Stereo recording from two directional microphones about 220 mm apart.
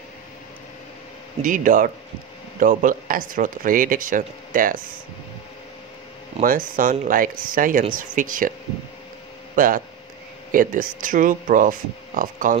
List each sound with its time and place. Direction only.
1.4 s speech: 35° right (ahead or behind)
6.4 s speech: 40° right (ahead or behind)
9.6 s speech: 40° right (ahead or behind)